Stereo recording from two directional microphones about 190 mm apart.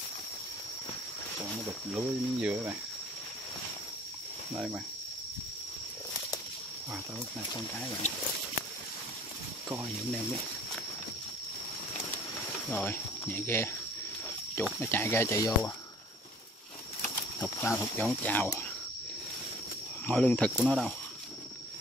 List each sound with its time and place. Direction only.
2.0 s cricket: 10° right (ahead or behind)
4.6 s cricket: 5° right (ahead or behind)
12.6 s speech: 5° left (ahead or behind)
17.4 s speech: 10° left (ahead or behind)
20.1 s speech: 5° left (ahead or behind)